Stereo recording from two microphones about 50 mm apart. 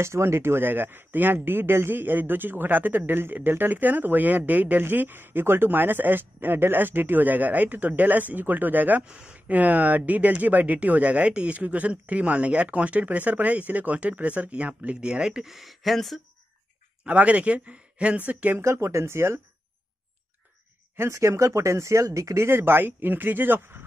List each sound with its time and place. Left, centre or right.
0.0 s speech: right
9.0 s speech: right; by 16.2 s centre
17.0 s speech: right
18.6 s speech: right
20.9 s speech: right